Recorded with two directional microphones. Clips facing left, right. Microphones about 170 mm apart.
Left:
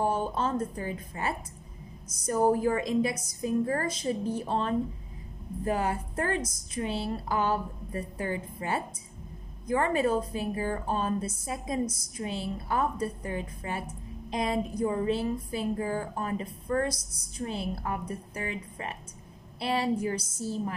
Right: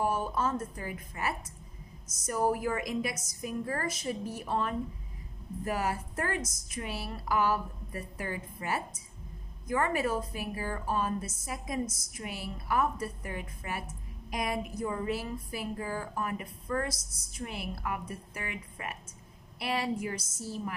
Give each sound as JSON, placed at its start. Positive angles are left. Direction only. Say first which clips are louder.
{"t": 0.0, "sound": "a woman's voice", "louder": "left 2 dB", "side_deg": 25}